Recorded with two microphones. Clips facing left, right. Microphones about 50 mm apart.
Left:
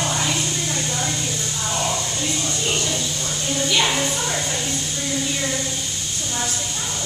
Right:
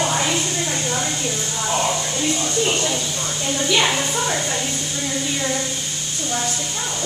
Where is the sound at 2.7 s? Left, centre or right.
Centre.